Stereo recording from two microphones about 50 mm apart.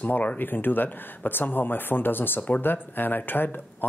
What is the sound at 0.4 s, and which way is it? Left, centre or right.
Speech, left.